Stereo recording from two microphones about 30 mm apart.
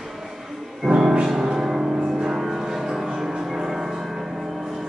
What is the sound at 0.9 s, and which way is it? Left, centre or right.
Music, right.